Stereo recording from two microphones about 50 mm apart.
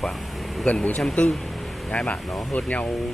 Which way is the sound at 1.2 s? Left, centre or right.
Left.